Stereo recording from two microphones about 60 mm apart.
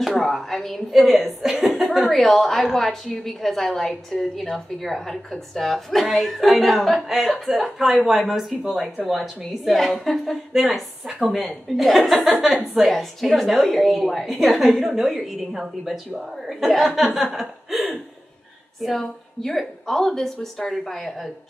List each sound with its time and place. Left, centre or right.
0.0 s a woman's voice: centre